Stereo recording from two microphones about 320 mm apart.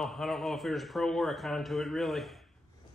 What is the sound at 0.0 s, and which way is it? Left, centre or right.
Speech, centre.